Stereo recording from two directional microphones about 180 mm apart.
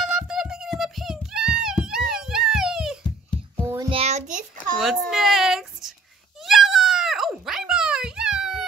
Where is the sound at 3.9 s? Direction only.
35° right (ahead or behind).